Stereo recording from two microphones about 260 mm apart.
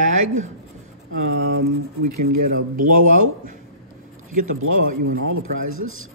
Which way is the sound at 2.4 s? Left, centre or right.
Right.